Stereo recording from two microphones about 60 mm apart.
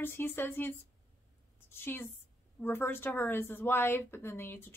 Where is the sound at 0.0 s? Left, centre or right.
Left.